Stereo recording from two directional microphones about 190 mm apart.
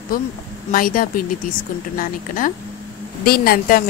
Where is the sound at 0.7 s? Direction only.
45° left (ahead or behind).